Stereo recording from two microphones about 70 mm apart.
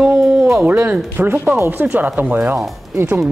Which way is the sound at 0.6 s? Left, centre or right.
Right.